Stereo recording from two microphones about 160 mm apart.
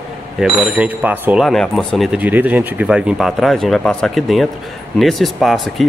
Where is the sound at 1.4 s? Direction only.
Centre (ahead or behind).